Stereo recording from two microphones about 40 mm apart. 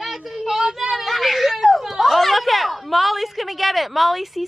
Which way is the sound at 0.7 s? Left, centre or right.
Centre.